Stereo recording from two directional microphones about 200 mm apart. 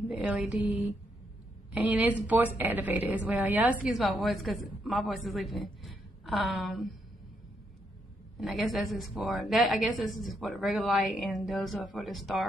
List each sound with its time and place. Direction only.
0.2 s a woman's voice: 5° right (ahead or behind)
8.4 s a woman's voice: centre (ahead or behind)